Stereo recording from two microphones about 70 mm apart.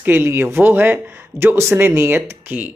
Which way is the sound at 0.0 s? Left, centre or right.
Right.